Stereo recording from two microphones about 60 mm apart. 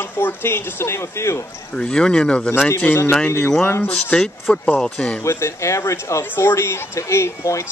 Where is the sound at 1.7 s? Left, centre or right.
Centre.